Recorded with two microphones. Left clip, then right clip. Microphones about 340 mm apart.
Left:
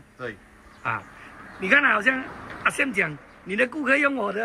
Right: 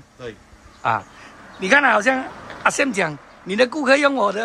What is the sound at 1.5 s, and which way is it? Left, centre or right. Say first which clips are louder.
Speech: right 4 dB; centre.